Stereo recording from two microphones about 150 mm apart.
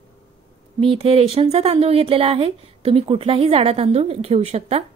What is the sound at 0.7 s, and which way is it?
A woman's voice, 40° right (ahead or behind).